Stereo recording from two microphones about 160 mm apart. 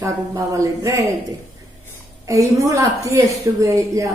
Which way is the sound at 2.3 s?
20° right (ahead or behind).